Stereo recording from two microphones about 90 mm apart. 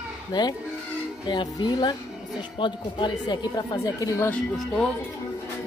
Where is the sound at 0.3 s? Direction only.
50° left (ahead or behind).